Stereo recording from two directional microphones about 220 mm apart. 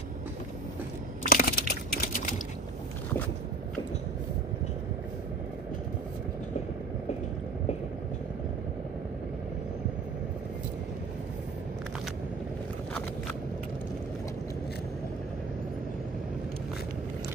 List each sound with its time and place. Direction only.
1.3 s typing: 40° left (ahead or behind)